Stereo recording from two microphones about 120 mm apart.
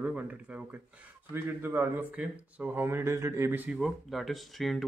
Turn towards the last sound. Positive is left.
turn(degrees=0)  # may be behind; listen again after turning